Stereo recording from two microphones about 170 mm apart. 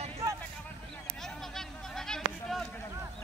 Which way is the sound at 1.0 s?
Centre (ahead or behind).